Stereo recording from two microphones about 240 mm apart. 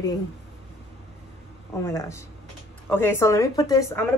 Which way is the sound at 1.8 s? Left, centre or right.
Centre.